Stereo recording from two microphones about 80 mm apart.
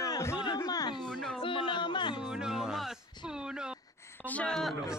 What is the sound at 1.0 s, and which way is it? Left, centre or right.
Speech, centre.